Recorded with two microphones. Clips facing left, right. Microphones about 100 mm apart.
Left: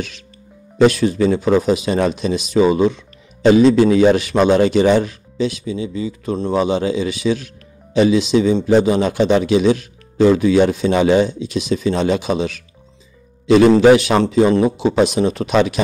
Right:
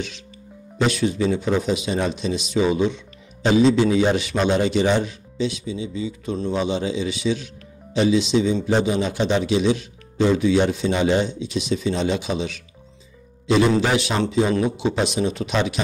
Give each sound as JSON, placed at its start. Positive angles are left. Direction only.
{"t": 0.8, "sound": "speech", "side_deg": 50}
{"t": 2.0, "sound": "speech", "side_deg": 60}
{"t": 10.9, "sound": "speech", "side_deg": 85}
{"t": 11.2, "sound": "a man's voice", "side_deg": 50}